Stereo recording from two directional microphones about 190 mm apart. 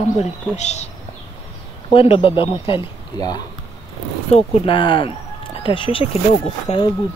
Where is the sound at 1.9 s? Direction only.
30° left (ahead or behind).